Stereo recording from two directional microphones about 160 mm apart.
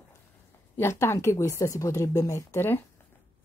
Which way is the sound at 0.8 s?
15° left (ahead or behind).